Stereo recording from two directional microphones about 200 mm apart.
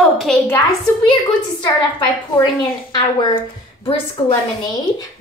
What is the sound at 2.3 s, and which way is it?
Speech, 20° left (ahead or behind).